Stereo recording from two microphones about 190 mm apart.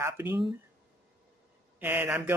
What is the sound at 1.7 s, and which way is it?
Speech, 10° right (ahead or behind).